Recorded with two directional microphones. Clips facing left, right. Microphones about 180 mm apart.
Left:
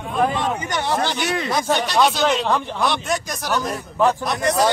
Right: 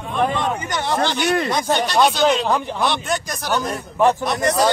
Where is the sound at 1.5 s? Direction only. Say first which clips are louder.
Right 1 dB; centre (ahead or behind).